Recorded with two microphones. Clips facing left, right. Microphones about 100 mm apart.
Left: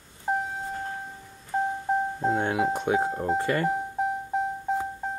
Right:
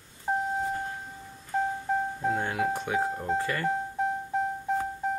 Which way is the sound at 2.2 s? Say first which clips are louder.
Left 3 dB; 25° left (ahead or behind).